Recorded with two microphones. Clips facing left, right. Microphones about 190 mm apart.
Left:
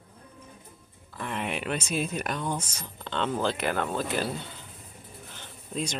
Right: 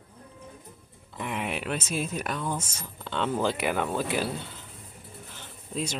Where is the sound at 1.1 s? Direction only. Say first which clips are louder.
Even; 10° right (ahead or behind).